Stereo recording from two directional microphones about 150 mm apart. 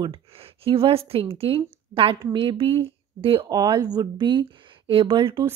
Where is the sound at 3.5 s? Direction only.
25° right (ahead or behind).